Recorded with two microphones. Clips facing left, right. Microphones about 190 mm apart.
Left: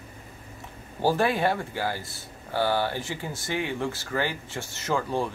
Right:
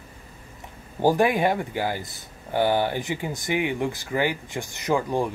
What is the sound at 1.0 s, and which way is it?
Speech, 15° right (ahead or behind).